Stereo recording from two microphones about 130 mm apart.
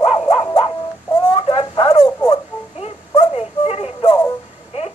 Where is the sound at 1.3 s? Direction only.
45° left (ahead or behind).